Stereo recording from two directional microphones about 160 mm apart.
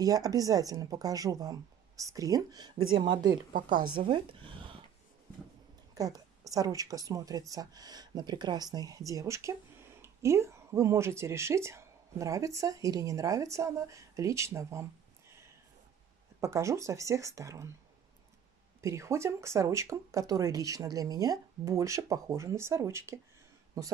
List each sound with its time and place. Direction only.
0.0 s speech: 20° right (ahead or behind)
5.9 s speech: 25° right (ahead or behind)
18.8 s speech: 20° right (ahead or behind)